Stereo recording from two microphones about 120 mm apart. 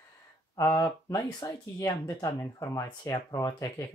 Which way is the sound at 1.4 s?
30° left (ahead or behind).